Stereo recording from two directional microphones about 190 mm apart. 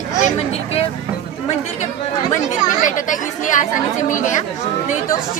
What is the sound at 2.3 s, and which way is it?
Speech, 40° left (ahead or behind).